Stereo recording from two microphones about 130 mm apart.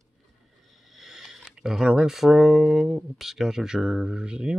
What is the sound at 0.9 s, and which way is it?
Speech, centre (ahead or behind).